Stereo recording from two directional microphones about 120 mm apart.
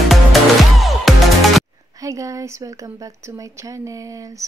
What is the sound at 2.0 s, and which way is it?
Speech, 25° right (ahead or behind).